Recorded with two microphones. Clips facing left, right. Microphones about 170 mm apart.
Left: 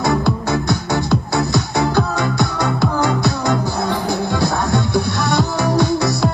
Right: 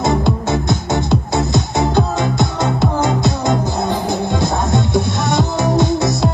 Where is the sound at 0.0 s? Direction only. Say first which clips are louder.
Right 1 dB; 20° right (ahead or behind).